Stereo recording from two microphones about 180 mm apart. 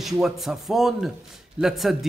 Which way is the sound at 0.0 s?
Centre (ahead or behind).